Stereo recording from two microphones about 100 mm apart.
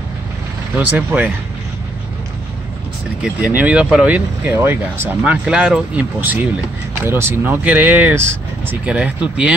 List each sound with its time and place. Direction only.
0.7 s speech: 15° right (ahead or behind)
3.2 s speech: 15° right (ahead or behind)
5.2 s speech: 10° right (ahead or behind)
8.8 s speech: 15° right (ahead or behind)